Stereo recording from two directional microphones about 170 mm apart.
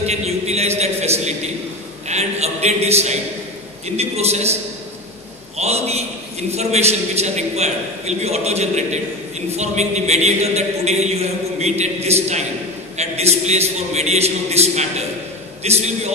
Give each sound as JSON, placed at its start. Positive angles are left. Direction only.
{"t": 0.0, "sound": "a man's voice", "side_deg": -40}
{"t": 5.6, "sound": "a man's voice", "side_deg": -40}